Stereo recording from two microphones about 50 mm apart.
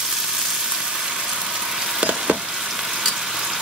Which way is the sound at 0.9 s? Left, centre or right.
Centre.